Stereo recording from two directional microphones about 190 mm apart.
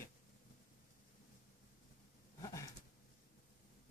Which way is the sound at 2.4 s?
15° left (ahead or behind).